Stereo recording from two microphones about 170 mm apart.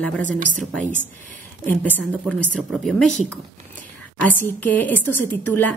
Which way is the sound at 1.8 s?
10° left (ahead or behind).